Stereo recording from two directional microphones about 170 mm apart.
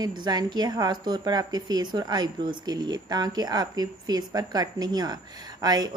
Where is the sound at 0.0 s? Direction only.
25° right (ahead or behind).